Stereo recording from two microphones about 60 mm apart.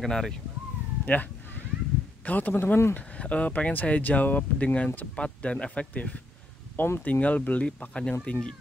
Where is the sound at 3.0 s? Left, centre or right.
Left.